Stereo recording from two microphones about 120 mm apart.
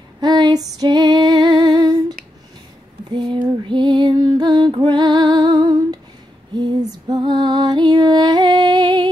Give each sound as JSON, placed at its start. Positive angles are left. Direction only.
{"t": 0.2, "sound": "female singing", "side_deg": -35}
{"t": 3.1, "sound": "music", "side_deg": -40}
{"t": 6.5, "sound": "female singing", "side_deg": -35}